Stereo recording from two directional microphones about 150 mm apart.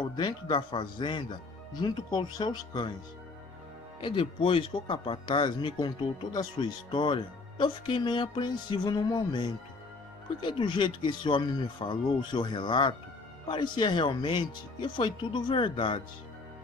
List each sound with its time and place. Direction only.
0.0 s speech: 30° left (ahead or behind)
4.0 s speech: 35° left (ahead or behind)